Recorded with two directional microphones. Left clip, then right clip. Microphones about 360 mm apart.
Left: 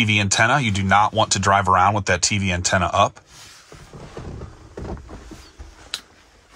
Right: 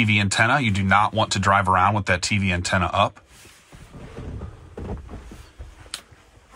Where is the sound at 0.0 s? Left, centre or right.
Centre.